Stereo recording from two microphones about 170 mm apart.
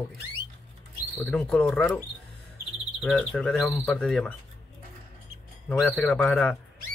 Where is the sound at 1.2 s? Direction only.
5° left (ahead or behind).